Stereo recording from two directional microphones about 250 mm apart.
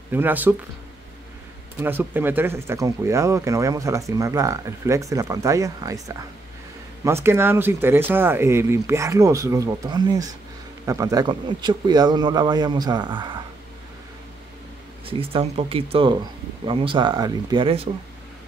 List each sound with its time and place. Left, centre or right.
0.1 s speech: centre
1.8 s speech: centre
15.0 s speech: right